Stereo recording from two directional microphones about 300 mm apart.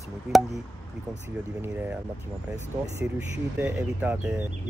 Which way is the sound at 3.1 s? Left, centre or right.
Centre.